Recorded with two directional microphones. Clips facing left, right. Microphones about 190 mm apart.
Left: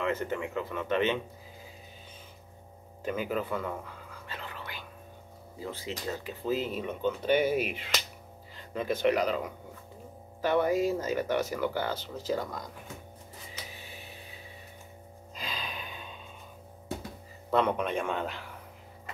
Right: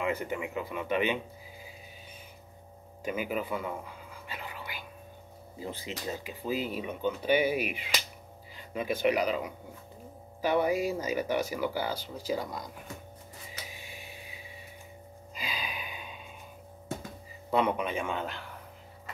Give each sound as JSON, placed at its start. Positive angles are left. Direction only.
{"t": 0.0, "sound": "speech", "side_deg": -10}
{"t": 3.0, "sound": "whispering", "side_deg": -10}
{"t": 5.6, "sound": "speech", "side_deg": -15}
{"t": 13.7, "sound": "a sound", "side_deg": -10}
{"t": 15.3, "sound": "gasp", "side_deg": -5}
{"t": 17.5, "sound": "a man's voice", "side_deg": -5}